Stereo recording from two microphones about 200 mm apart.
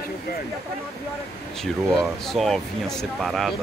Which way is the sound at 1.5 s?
Centre (ahead or behind).